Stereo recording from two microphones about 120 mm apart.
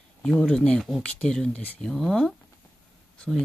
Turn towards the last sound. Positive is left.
turn(degrees=10)  # may be behind; listen again after turning